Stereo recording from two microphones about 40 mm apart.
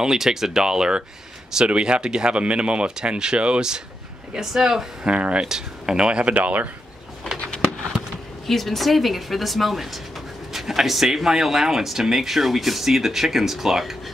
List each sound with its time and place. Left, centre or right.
0.0 s speech: centre
4.5 s speech: centre
5.0 s speech: right
5.4 s speech: centre
6.0 s speech: right
6.3 s speech: right
8.5 s a woman's voice: centre